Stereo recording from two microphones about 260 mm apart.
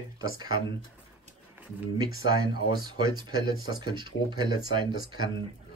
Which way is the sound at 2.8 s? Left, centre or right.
Centre.